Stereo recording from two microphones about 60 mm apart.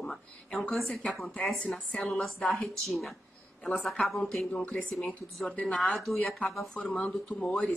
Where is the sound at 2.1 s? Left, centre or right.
Centre.